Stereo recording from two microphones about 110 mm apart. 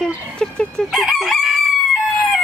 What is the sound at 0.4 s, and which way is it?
Chicken, 5° left (ahead or behind).